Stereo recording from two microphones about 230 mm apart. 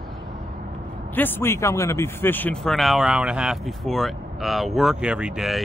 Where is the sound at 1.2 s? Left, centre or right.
Centre.